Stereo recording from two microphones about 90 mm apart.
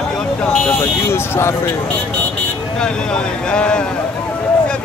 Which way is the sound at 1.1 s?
30° left (ahead or behind).